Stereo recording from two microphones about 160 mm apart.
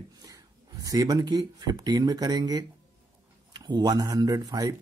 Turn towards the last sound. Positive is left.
turn(degrees=-25)  # may be behind; listen again after turning